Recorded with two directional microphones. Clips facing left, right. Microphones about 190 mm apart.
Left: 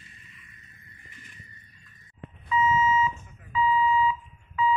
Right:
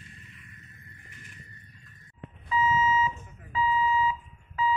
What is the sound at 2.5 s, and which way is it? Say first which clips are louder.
Beep: left 2 dB; 35° right (ahead or behind).